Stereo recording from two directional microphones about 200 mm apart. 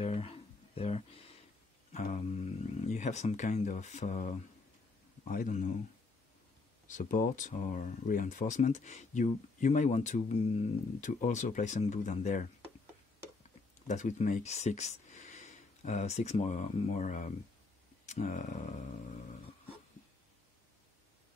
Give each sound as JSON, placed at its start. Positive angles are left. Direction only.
{"t": 0.0, "sound": "a sound", "side_deg": 30}
{"t": 1.9, "sound": "speech", "side_deg": 35}
{"t": 6.9, "sound": "speech", "side_deg": 40}
{"t": 13.8, "sound": "speech", "side_deg": 35}